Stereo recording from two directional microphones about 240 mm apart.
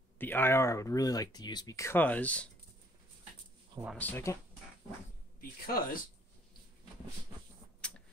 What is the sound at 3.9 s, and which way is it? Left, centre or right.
Speech, centre.